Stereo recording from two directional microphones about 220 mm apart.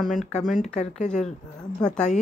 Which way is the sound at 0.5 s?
30° left (ahead or behind).